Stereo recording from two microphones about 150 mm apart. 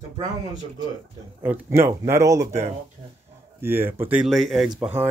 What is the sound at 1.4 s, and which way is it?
Speech, 15° right (ahead or behind).